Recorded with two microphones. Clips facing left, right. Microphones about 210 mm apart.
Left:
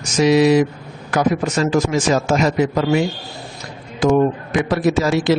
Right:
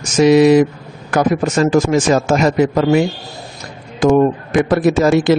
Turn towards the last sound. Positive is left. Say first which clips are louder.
# right 4 dB
turn(degrees=-55)  # may be behind; listen again after turning